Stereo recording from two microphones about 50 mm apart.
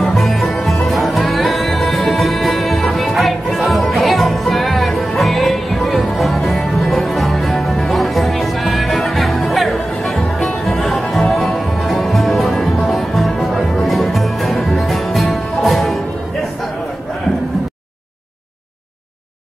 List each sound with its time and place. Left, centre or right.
0.0 s music: centre